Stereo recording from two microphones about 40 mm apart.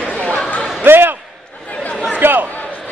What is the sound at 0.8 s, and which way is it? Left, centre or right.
Slam, right.